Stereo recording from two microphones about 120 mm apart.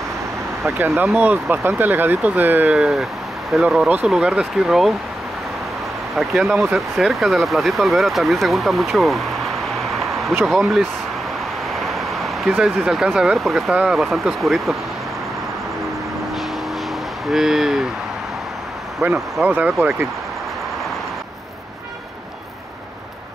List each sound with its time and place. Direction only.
0.7 s speech: 15° right (ahead or behind); by 4.9 s centre (ahead or behind)
6.1 s speech: centre (ahead or behind)
9.8 s a sound: centre (ahead or behind)
11.8 s vehicle: centre (ahead or behind)
12.5 s speech: 5° right (ahead or behind)
17.3 s speech: 5° right (ahead or behind)
19.0 s speech: 15° right (ahead or behind)